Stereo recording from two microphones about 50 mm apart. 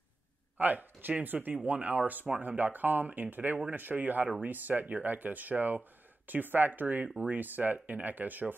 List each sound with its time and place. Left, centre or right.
0.6 s speech: right